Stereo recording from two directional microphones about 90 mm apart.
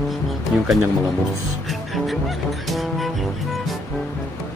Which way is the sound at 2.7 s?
Centre (ahead or behind).